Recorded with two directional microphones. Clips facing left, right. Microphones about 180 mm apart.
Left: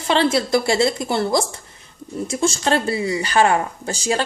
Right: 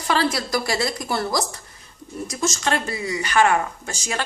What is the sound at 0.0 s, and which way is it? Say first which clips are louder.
Speech: left 4 dB; 25° left (ahead or behind).